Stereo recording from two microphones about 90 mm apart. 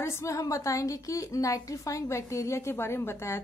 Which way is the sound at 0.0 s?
30° left (ahead or behind).